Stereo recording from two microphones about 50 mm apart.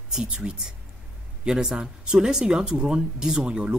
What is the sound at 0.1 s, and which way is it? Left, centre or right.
A man's voice, centre.